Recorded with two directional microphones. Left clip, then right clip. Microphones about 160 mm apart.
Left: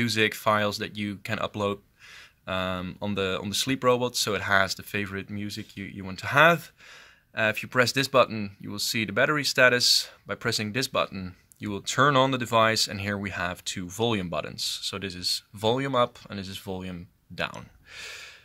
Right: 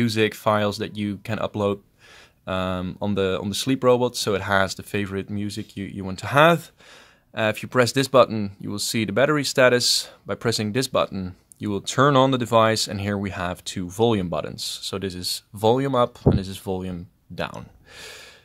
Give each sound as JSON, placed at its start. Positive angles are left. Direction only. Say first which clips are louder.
{"t": 0.0, "sound": "speech", "louder": "right 3 dB", "side_deg": -55}